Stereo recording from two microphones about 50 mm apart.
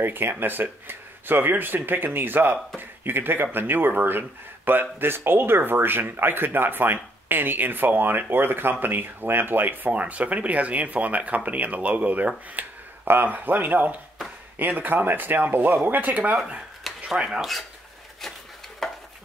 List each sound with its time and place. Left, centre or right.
0.0 s speech: right
9.8 s speech: right
13.0 s speech: right
17.1 s speech: centre
18.8 s a sound: centre